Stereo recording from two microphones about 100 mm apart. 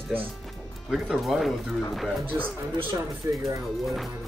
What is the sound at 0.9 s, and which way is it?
Speech, 5° right (ahead or behind).